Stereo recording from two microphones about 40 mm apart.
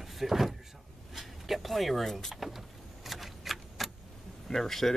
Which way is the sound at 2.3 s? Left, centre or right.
Centre.